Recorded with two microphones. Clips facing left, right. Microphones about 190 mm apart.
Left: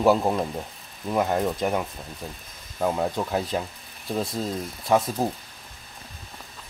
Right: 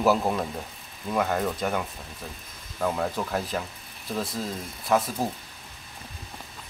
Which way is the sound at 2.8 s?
15° left (ahead or behind).